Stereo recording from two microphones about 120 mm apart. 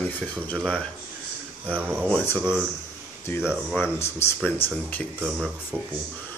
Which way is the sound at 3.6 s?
Centre (ahead or behind).